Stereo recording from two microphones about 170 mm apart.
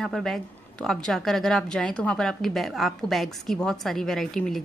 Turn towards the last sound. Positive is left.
turn(degrees=0)  # may be behind; listen again after turning